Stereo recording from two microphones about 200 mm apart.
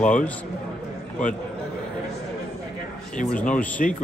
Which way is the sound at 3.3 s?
5° left (ahead or behind).